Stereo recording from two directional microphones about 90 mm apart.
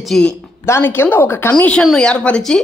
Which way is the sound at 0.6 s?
30° left (ahead or behind).